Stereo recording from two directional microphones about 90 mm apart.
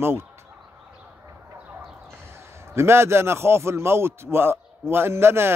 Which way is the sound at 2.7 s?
30° right (ahead or behind).